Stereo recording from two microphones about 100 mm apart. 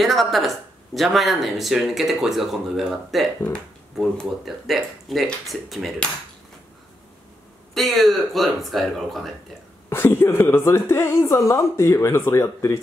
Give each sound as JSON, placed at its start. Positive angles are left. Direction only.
{"t": 0.0, "sound": "speech", "side_deg": 0}
{"t": 7.7, "sound": "speech", "side_deg": 0}
{"t": 9.8, "sound": "speech", "side_deg": 25}